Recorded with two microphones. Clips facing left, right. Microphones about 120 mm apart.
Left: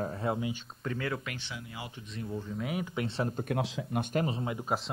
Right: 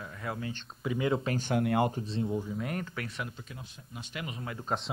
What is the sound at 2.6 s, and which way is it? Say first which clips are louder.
Speech: left 1 dB; 5° left (ahead or behind).